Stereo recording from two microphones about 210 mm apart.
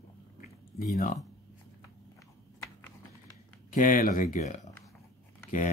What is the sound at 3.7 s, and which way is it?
Speech, 40° left (ahead or behind).